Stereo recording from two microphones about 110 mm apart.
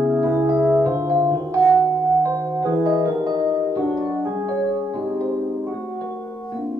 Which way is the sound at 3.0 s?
35° right (ahead or behind).